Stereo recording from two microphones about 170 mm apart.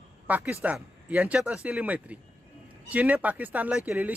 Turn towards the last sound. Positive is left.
turn(degrees=-5)  # may be behind; listen again after turning